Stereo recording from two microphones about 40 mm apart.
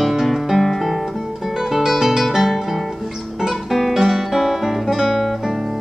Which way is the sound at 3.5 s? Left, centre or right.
Centre.